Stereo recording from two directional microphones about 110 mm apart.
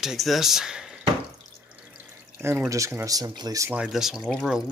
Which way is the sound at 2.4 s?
20° right (ahead or behind).